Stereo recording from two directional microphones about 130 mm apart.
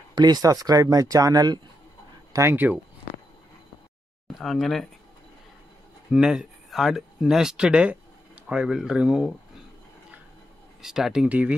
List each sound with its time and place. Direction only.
0.1 s speech: 30° right (ahead or behind)
2.3 s speech: 20° right (ahead or behind)
4.3 s speech: centre (ahead or behind)
6.1 s speech: 5° right (ahead or behind)
10.8 s speech: 5° right (ahead or behind)